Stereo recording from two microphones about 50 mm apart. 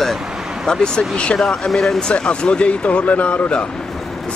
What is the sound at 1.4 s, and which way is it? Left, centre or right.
Speech, centre.